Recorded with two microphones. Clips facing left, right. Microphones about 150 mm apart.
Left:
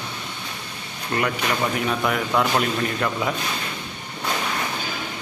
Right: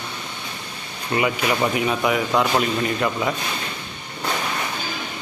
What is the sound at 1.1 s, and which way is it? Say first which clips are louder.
Speech: right 3 dB; 5° right (ahead or behind).